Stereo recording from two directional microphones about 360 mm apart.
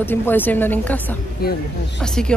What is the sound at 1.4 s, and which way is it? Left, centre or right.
Speech, left.